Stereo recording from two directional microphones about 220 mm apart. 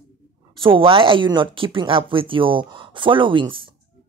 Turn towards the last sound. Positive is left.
turn(degrees=-20)  # may be behind; listen again after turning